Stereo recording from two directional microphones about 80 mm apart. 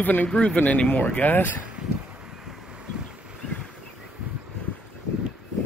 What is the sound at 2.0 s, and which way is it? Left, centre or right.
Vehicle, centre.